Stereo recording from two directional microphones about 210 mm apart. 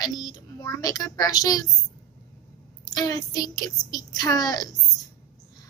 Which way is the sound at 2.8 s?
20° left (ahead or behind).